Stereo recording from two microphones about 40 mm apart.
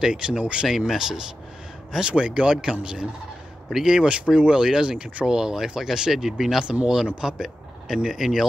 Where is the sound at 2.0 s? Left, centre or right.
Right.